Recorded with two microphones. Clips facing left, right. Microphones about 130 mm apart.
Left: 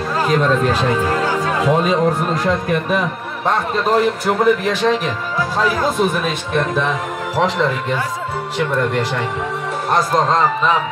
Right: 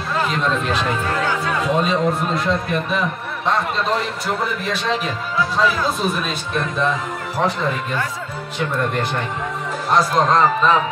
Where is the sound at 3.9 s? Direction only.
50° left (ahead or behind).